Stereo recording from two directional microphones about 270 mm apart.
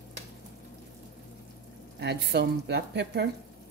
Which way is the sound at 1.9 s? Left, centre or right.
Right.